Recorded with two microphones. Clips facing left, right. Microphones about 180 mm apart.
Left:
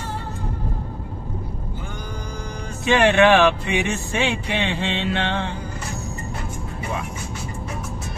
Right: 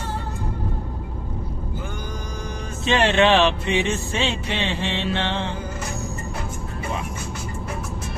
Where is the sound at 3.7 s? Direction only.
15° left (ahead or behind).